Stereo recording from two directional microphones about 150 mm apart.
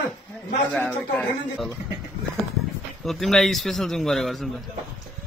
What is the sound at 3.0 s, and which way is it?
A man's voice, centre (ahead or behind).